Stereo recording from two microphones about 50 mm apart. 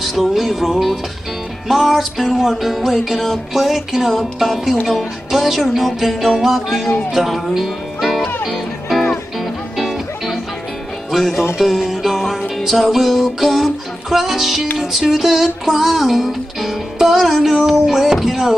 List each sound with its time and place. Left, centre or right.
0.0 s music: centre
7.1 s speech: centre
8.5 s music: centre
11.1 s speech: centre
11.5 s music: centre